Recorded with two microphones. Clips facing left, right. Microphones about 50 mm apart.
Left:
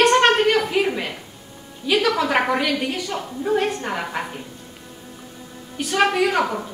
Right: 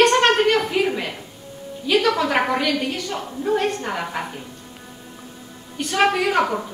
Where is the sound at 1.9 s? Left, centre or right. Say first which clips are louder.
Even; centre.